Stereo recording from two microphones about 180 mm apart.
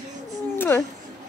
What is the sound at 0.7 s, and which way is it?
Speech, 10° left (ahead or behind).